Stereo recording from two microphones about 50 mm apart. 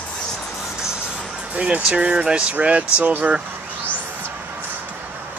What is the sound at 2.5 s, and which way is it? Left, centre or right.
Speech, right.